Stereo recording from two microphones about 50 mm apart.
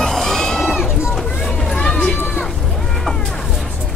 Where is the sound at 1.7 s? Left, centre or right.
Centre.